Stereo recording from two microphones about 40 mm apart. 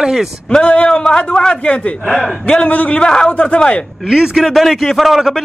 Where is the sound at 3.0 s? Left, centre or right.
Left.